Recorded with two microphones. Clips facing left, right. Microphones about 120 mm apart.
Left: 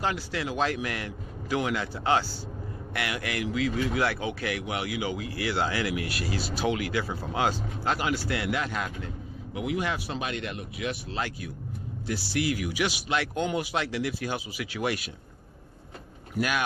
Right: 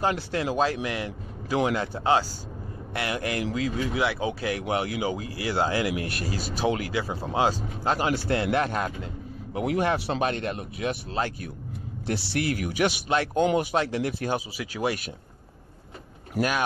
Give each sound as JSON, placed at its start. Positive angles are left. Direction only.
{"t": 0.4, "sound": "speech", "side_deg": -35}
{"t": 6.0, "sound": "speech", "side_deg": -45}
{"t": 8.5, "sound": "speech", "side_deg": -50}
{"t": 12.1, "sound": "speech", "side_deg": -60}
{"t": 13.1, "sound": "speech", "side_deg": -40}
{"t": 16.3, "sound": "speech", "side_deg": -35}